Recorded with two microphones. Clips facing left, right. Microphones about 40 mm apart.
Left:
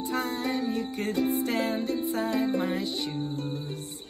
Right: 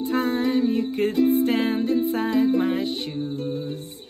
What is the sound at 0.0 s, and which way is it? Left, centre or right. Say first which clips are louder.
Music: right 7 dB; right.